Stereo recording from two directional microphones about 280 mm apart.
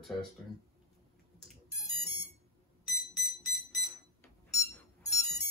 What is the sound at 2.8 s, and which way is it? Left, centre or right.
Alarm, centre.